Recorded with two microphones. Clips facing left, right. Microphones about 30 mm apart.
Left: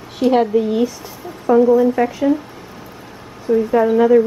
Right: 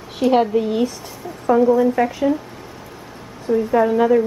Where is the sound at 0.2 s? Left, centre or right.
Centre.